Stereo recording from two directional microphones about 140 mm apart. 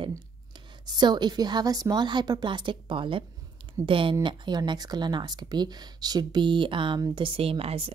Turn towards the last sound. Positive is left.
turn(degrees=-45)  # may be behind; listen again after turning